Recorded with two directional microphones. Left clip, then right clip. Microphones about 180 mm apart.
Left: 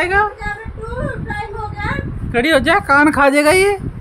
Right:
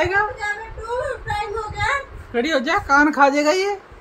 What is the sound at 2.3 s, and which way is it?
Speech, 40° left (ahead or behind).